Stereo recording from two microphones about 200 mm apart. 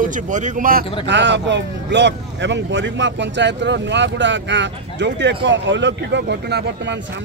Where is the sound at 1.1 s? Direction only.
60° right (ahead or behind).